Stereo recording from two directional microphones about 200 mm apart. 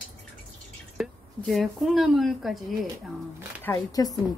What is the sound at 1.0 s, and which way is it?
A woman's voice, centre (ahead or behind).